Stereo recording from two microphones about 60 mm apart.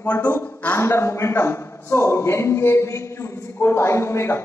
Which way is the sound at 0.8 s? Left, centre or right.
Left.